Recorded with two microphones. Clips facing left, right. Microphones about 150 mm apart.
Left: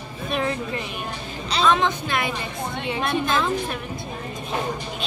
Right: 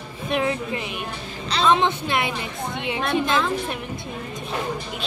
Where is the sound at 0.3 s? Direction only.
15° right (ahead or behind).